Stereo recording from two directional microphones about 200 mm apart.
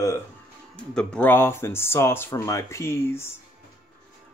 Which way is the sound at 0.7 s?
5° left (ahead or behind).